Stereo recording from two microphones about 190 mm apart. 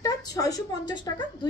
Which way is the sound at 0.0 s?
20° left (ahead or behind).